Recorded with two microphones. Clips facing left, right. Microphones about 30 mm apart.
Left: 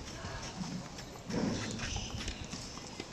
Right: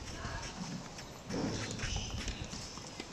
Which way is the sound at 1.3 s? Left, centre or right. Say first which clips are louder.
Left 2 dB; centre.